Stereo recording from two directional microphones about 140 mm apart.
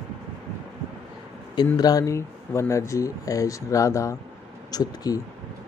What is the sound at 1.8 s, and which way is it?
Speech, 25° left (ahead or behind).